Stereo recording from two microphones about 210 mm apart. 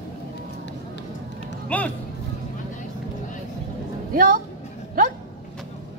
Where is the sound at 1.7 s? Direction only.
5° left (ahead or behind).